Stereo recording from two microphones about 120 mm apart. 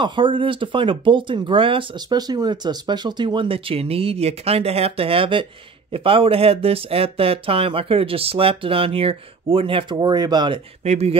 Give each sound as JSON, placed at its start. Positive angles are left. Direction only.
{"t": 0.0, "sound": "speech", "side_deg": -45}
{"t": 10.8, "sound": "speech", "side_deg": -65}